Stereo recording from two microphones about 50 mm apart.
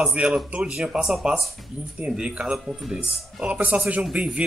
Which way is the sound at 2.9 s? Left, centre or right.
Right.